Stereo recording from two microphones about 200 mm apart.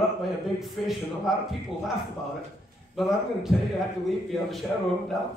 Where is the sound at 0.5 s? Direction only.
Centre (ahead or behind).